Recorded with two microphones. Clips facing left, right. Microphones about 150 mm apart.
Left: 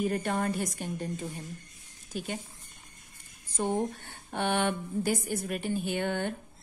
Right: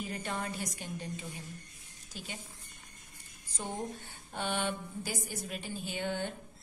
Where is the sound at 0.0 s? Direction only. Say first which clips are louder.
Left 8 dB; 55° left (ahead or behind).